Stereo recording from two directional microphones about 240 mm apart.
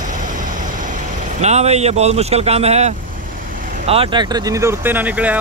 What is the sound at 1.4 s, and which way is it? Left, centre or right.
Speech, right.